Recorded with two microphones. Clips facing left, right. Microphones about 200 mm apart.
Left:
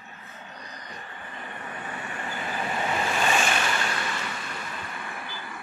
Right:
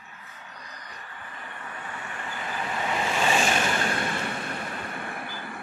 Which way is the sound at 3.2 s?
30° right (ahead or behind).